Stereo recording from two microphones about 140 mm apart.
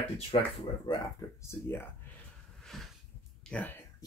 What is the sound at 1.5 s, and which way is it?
Speech, 20° left (ahead or behind).